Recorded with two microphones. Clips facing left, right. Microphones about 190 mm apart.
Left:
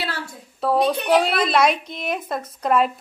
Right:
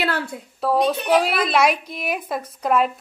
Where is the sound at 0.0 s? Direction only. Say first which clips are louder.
Right 6 dB; 60° right (ahead or behind).